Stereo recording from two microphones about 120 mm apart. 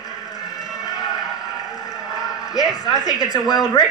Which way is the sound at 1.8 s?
30° left (ahead or behind).